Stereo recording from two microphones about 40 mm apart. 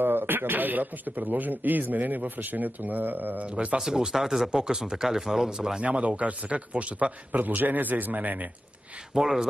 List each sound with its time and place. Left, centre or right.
0.0 s a man's voice: right
3.4 s speech: right
3.8 s speech: centre
5.8 s a man's voice: right
9.1 s speech: centre